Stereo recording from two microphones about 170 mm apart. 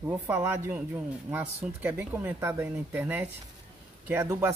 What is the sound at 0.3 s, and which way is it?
Speech, 10° right (ahead or behind).